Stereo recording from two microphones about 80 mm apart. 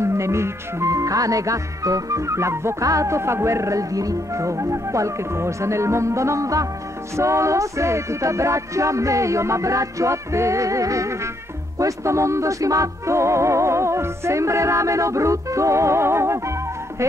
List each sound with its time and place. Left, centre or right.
0.0 s speech: right